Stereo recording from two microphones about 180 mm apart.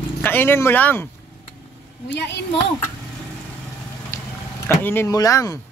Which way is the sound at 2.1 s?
70° left (ahead or behind).